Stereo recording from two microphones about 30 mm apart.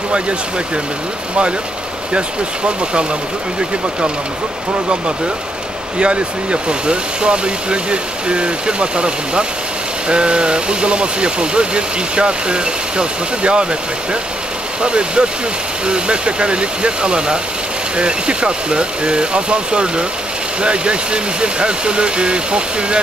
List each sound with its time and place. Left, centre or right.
5.9 s speech: right
14.8 s speech: right